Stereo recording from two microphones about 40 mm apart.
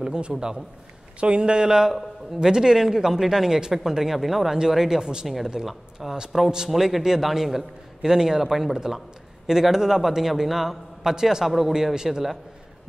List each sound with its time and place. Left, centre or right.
0.0 s a man's voice: centre